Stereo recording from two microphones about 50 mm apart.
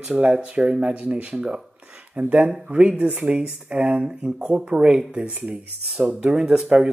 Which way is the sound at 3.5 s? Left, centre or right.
Right.